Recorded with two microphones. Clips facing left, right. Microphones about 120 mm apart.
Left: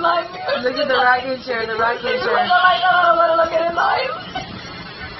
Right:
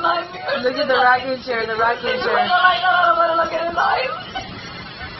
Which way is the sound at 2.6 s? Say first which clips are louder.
Left 2 dB; 20° left (ahead or behind).